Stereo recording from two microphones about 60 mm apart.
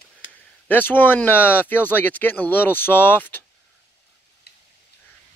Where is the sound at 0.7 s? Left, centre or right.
Left.